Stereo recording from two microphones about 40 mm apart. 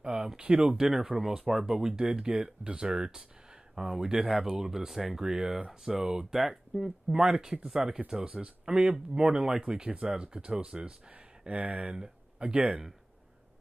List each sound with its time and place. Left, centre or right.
0.0 s speech: right
1.1 s speech: centre
7.1 s speech: centre
11.1 s speech: right
11.9 s speech: right